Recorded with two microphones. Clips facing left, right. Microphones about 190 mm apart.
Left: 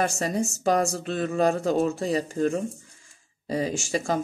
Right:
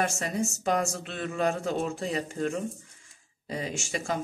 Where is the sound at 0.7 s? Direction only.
35° left (ahead or behind).